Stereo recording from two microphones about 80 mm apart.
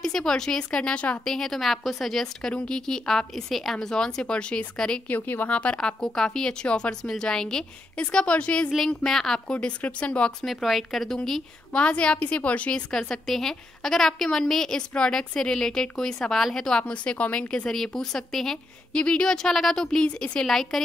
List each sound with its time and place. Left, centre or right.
0.0 s a woman's voice: centre
1.2 s a woman's voice: centre
5.1 s a woman's voice: left
10.4 s a woman's voice: centre
11.7 s a woman's voice: centre